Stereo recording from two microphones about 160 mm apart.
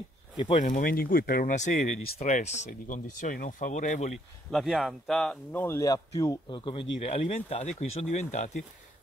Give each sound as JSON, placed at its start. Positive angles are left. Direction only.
{"t": 0.7, "sound": "speech", "side_deg": 60}
{"t": 1.5, "sound": "speech", "side_deg": 50}
{"t": 4.5, "sound": "speech", "side_deg": 0}